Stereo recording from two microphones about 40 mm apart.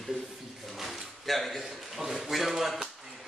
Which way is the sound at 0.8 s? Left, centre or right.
Centre.